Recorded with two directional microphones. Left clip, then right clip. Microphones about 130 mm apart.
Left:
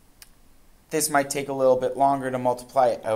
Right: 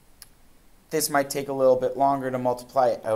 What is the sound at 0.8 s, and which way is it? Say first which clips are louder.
Speech: left 1 dB; 20° right (ahead or behind).